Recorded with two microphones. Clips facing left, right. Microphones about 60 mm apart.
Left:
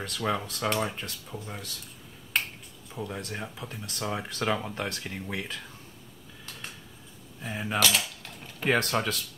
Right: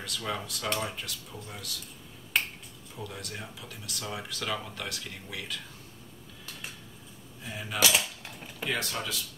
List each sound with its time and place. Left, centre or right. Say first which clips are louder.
0.0 s speech: left 5 dB; left
3.0 s speech: left 5 dB; left
7.4 s speech: left 5 dB; left
7.8 s mechanisms: right 3 dB; centre
8.6 s speech: left 7 dB; left